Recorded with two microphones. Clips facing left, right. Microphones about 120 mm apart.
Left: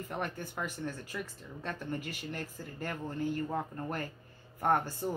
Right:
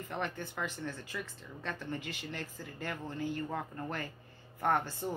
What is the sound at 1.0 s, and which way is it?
Speech, 45° left (ahead or behind).